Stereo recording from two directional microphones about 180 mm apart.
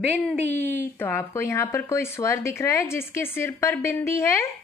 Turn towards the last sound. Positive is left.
turn(degrees=15)  # may be behind; listen again after turning